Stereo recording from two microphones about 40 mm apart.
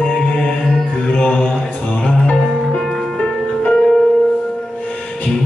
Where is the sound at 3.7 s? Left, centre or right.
Centre.